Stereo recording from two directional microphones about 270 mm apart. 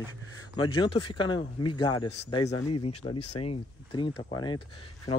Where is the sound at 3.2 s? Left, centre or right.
Left.